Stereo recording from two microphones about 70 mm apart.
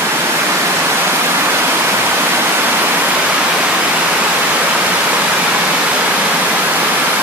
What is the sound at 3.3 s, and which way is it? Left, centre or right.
Pink noise, centre.